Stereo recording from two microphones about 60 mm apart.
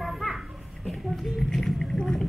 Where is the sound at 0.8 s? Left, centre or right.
Centre.